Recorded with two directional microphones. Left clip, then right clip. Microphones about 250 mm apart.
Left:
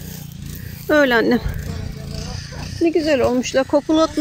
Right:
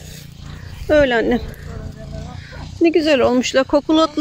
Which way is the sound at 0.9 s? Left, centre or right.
Centre.